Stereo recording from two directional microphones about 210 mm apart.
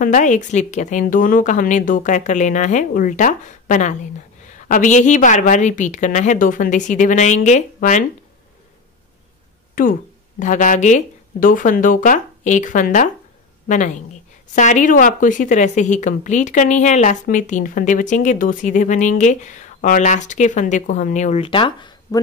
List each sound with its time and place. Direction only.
0.0 s a woman's voice: 40° left (ahead or behind)
9.8 s a woman's voice: 40° left (ahead or behind); by 22.2 s 20° left (ahead or behind)